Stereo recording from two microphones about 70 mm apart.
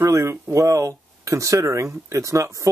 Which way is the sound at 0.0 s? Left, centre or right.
Right.